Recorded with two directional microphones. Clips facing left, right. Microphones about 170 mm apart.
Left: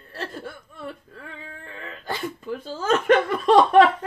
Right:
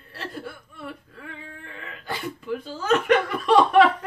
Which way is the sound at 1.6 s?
40° left (ahead or behind).